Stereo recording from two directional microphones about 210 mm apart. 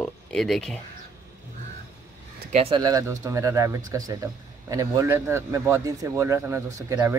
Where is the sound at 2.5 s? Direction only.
25° right (ahead or behind).